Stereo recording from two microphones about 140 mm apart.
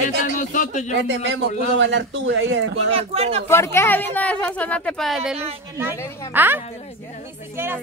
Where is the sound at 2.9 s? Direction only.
45° right (ahead or behind).